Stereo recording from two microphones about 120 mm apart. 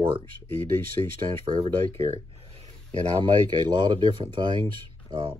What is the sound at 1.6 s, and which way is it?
Speech, 55° right (ahead or behind).